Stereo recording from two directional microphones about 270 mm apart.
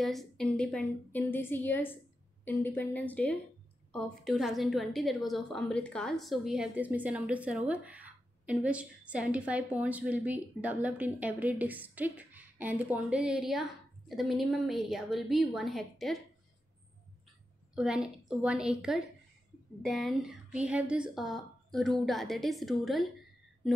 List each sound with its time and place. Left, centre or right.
0.0 s a woman's voice: centre
17.7 s a woman's voice: centre